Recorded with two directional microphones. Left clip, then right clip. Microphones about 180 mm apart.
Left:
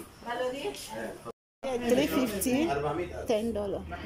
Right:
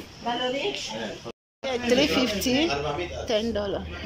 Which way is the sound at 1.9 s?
15° left (ahead or behind).